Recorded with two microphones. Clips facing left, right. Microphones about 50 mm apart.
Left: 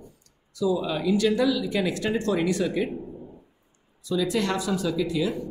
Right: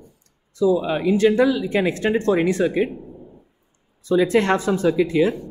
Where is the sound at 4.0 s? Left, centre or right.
Right.